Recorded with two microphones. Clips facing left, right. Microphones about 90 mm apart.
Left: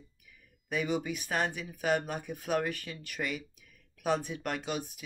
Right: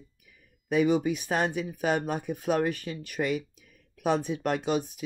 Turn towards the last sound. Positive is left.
turn(degrees=-25)  # may be behind; listen again after turning